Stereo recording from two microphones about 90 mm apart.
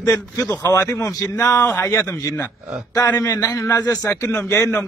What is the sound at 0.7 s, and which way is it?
A man's voice, 35° left (ahead or behind).